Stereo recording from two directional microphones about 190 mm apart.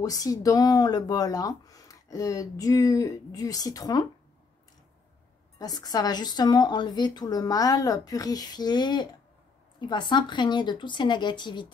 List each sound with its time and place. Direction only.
0.0 s speech: 20° left (ahead or behind)
5.6 s speech: 20° left (ahead or behind)